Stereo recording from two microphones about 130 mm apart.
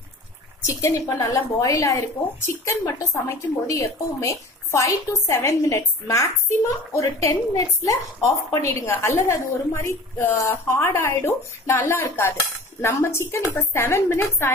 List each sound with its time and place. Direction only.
0.7 s a woman's voice: 25° left (ahead or behind)